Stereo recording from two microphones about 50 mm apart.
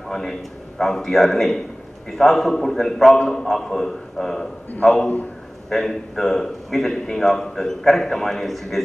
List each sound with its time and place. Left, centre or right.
0.1 s a man's voice: centre
4.8 s a man's voice: centre
5.7 s a man's voice: centre